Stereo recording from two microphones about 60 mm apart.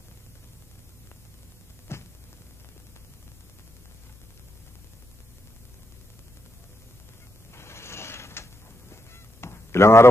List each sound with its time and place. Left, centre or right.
1.9 s a sound: left
7.5 s mechanisms: left
8.9 s honk: left